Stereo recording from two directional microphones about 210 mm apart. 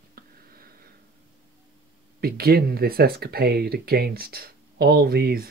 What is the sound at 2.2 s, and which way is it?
Speech, 45° right (ahead or behind).